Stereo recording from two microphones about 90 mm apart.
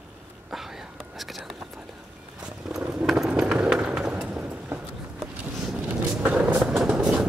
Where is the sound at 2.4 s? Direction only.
10° right (ahead or behind).